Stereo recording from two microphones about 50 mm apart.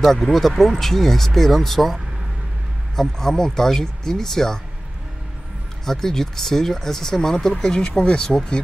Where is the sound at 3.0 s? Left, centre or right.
Centre.